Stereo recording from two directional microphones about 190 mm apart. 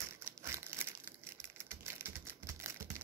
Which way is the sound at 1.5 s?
15° right (ahead or behind).